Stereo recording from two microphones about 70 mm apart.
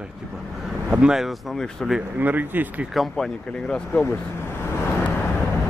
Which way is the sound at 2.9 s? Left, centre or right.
Centre.